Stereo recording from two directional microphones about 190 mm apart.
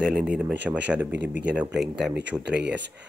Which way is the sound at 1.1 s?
70° right (ahead or behind).